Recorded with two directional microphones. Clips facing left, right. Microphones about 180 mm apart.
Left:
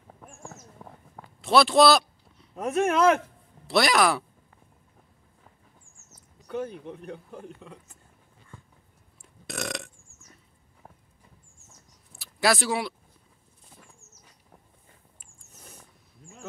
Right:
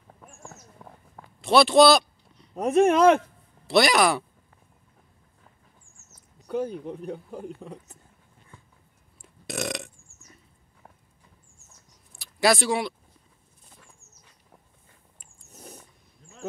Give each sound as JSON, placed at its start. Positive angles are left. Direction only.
{"t": 0.2, "sound": "a sound", "side_deg": 0}
{"t": 2.6, "sound": "speech", "side_deg": -30}
{"t": 3.6, "sound": "speech", "side_deg": 0}
{"t": 6.9, "sound": "speech", "side_deg": -35}
{"t": 9.2, "sound": "burping", "side_deg": 0}
{"t": 12.1, "sound": "a sound", "side_deg": 0}